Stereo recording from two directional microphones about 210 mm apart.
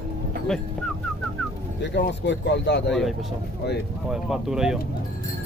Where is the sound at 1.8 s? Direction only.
55° left (ahead or behind).